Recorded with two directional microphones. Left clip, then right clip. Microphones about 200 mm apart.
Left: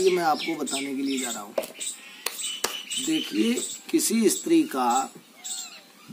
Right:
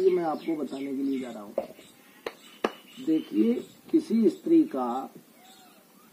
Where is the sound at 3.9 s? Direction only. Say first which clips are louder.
Left 1 dB; 25° left (ahead or behind).